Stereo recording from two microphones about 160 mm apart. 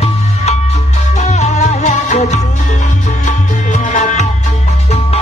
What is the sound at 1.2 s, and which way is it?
Music, 45° left (ahead or behind).